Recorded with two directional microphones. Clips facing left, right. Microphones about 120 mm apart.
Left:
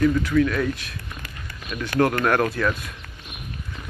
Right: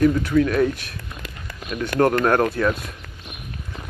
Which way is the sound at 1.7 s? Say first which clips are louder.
Right 3 dB; 25° right (ahead or behind).